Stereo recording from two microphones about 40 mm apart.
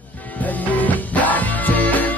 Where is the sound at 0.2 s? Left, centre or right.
Left.